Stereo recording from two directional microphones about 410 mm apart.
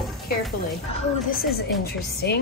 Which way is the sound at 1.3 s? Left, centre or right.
Left.